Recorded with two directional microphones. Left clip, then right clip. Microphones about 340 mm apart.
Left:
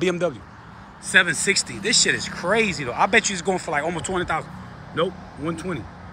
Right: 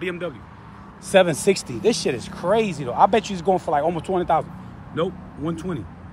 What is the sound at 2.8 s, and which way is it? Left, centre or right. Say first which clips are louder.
Speech: right 4 dB; centre.